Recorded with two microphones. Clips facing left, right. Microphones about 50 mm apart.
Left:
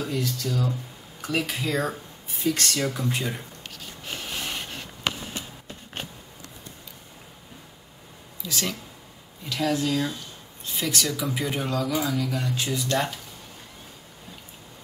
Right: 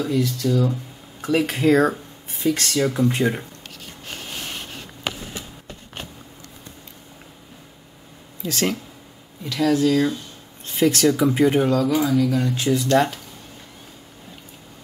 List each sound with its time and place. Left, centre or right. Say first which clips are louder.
0.0 s speech: right 7 dB; right
8.4 s speech: right 7 dB; right
10.6 s a sound: right 9 dB; right
11.1 s speech: right 11 dB; right